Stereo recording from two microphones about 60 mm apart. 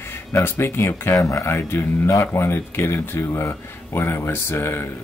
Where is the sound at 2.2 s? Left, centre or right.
Left.